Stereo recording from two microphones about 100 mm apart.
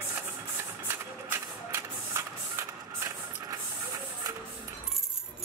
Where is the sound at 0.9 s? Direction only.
25° right (ahead or behind).